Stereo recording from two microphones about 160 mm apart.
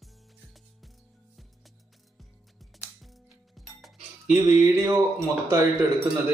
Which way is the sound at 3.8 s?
Centre (ahead or behind).